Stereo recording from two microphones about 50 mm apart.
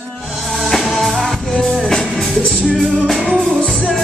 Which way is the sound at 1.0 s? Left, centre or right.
Centre.